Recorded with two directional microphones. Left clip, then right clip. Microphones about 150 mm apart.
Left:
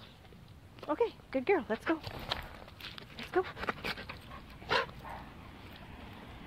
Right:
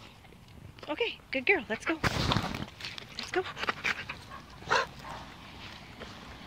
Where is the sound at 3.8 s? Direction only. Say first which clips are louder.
Right 7 dB; 40° left (ahead or behind).